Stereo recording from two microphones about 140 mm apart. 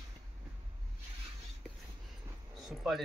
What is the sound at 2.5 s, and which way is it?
Speech, centre (ahead or behind).